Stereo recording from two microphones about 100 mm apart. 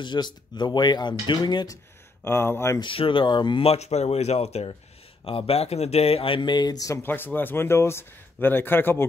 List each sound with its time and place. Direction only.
0.0 s speech: 50° left (ahead or behind)
2.2 s speech: 25° left (ahead or behind)
2.8 s speech: 60° left (ahead or behind)
3.6 s speech: 90° left
5.2 s speech: 75° left (ahead or behind); by 7.0 s 40° left (ahead or behind)
7.0 s speech: 20° left (ahead or behind)